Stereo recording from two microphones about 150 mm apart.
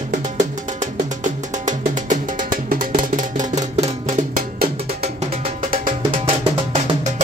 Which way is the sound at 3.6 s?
50° right (ahead or behind).